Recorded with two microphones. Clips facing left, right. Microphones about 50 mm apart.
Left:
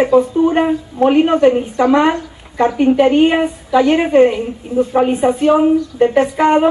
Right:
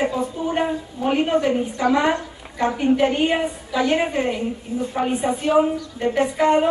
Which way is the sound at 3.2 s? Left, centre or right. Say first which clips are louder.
Left 7 dB; left.